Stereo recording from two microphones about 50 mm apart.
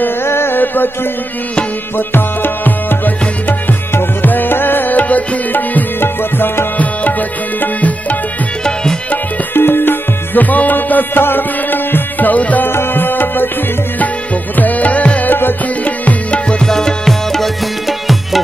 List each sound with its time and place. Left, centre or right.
0.0 s music: left
2.0 s music: left
6.8 s tabla: left
9.6 s music: left
12.6 s music: left
13.9 s music: left
16.6 s music: centre